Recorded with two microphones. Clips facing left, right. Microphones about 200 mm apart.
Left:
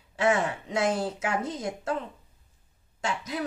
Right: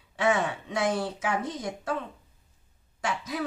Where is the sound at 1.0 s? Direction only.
25° left (ahead or behind).